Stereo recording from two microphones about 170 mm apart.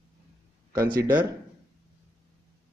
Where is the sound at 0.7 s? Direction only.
15° right (ahead or behind).